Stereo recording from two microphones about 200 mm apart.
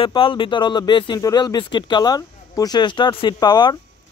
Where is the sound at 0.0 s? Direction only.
25° left (ahead or behind).